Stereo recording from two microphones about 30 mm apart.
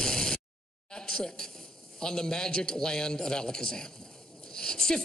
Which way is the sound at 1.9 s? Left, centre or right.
Left.